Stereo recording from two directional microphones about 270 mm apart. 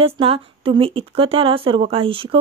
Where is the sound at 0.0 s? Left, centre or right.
Centre.